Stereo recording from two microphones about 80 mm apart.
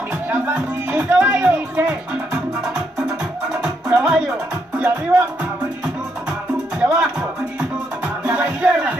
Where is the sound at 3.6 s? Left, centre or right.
Centre.